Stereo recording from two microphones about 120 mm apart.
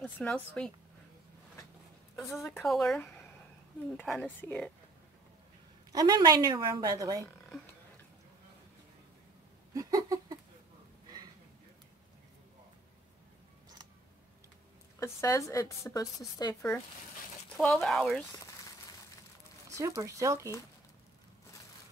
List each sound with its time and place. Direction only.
0.0 s speech: 5° left (ahead or behind)
2.1 s speech: centre (ahead or behind)
5.9 s a woman's voice: 30° right (ahead or behind)
9.8 s a sound: 30° right (ahead or behind)
15.0 s a woman's voice: 25° left (ahead or behind)
17.6 s speech: 5° left (ahead or behind)
18.2 s a sound: 25° left (ahead or behind)
20.0 s speech: 25° right (ahead or behind)